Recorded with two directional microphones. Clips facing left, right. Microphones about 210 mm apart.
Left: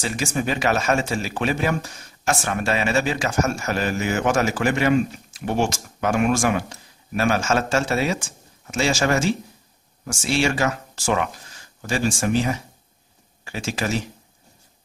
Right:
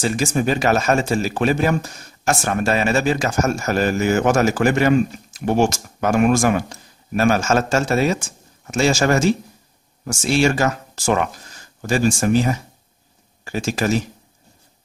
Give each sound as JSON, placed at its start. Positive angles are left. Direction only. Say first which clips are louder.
{"t": 0.0, "sound": "speech", "louder": "right 5 dB", "side_deg": -40}